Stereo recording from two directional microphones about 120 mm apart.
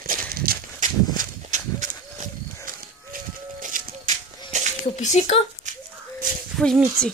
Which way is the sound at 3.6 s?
85° right.